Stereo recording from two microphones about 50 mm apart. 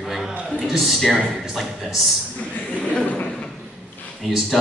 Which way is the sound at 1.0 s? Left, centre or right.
Centre.